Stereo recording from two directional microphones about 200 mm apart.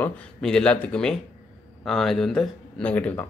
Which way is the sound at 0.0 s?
5° left (ahead or behind).